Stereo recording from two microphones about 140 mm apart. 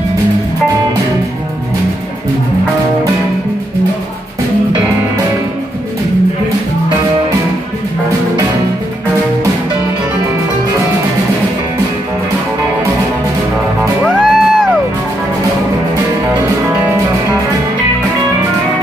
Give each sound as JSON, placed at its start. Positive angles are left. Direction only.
{"t": 14.0, "sound": "music", "side_deg": 5}